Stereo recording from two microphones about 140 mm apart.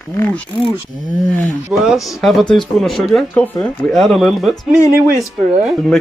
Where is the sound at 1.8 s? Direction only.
Centre (ahead or behind).